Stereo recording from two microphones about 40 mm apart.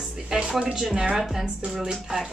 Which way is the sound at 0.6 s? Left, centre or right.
Right.